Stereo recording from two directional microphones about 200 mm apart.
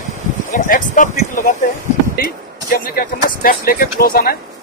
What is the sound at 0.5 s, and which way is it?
Speech, 40° left (ahead or behind).